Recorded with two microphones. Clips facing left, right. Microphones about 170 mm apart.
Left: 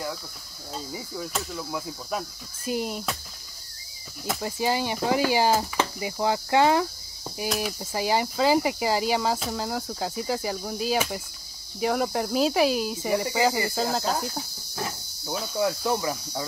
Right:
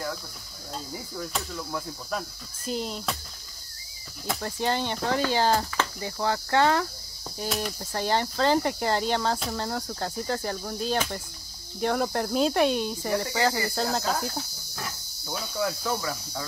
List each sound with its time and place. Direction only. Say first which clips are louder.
0.7 s speech: left 2 dB; 5° left (ahead or behind)
4.3 s speech: left 2 dB; 10° left (ahead or behind)
14.8 s cricket: left 5 dB; 20° left (ahead or behind)
15.5 s speech: left 4 dB; 15° left (ahead or behind)